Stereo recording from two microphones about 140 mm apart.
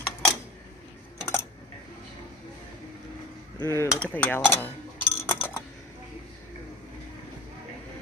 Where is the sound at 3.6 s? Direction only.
20° left (ahead or behind).